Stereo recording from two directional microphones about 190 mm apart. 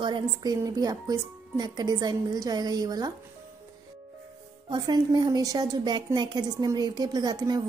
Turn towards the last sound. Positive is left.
turn(degrees=-20)  # may be behind; listen again after turning